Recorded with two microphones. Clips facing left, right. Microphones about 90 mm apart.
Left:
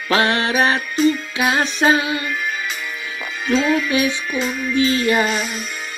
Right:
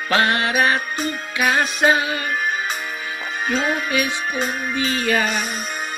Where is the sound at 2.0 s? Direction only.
35° right (ahead or behind).